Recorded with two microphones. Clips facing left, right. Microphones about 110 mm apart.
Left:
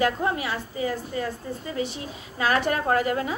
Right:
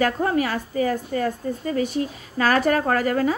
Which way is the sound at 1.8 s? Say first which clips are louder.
Right 6 dB; 50° right (ahead or behind).